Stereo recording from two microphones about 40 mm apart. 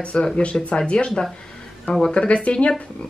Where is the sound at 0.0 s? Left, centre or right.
Left.